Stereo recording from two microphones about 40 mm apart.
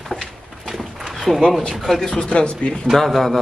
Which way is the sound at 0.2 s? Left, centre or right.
Centre.